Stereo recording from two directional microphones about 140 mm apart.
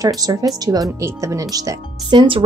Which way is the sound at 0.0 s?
25° right (ahead or behind).